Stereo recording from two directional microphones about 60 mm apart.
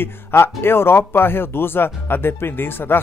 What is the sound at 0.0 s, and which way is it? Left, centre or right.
Speech, left.